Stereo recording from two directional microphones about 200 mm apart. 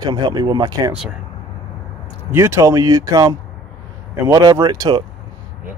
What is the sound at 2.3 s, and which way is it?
Speech, 15° right (ahead or behind).